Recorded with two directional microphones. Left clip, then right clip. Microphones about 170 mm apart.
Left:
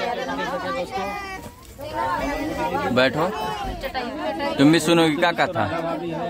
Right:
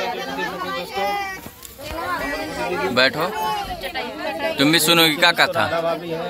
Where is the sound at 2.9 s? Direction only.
15° left (ahead or behind).